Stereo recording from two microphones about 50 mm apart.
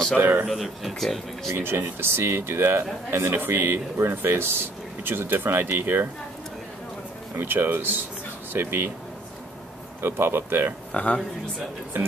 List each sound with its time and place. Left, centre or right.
0.2 s speech: right
0.5 s speech: centre
1.5 s speech: right
7.3 s speech: right
10.0 s speech: right
10.9 s speech: left